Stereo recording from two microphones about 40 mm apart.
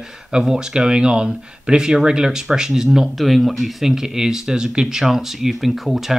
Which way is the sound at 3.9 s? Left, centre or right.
Centre.